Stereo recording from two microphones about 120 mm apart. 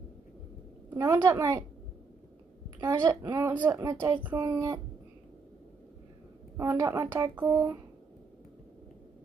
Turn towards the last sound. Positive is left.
turn(degrees=-25)  # may be behind; listen again after turning